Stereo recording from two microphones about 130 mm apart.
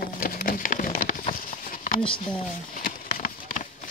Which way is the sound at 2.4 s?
90° left.